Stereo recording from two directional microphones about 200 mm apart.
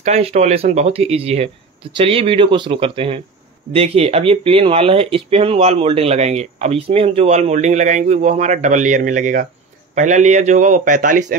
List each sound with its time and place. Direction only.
0.0 s speech: 30° right (ahead or behind)